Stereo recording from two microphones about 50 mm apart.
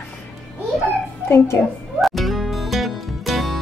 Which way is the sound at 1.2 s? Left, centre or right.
Left.